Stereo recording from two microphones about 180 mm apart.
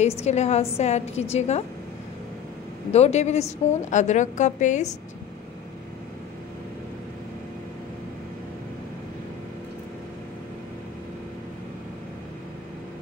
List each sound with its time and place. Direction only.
0.0 s a woman's voice: 35° left (ahead or behind)
2.9 s a woman's voice: 35° left (ahead or behind)